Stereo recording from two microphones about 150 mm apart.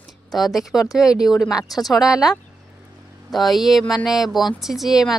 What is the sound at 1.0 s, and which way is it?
Speech, 25° left (ahead or behind).